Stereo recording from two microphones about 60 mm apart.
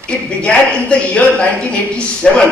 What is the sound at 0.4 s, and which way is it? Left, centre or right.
Speech, centre.